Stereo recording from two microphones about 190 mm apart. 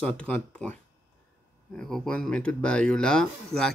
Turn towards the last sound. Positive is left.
turn(degrees=5)  # may be behind; listen again after turning